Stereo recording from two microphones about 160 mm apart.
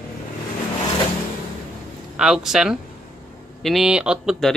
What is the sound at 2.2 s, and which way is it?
Speech, 5° right (ahead or behind).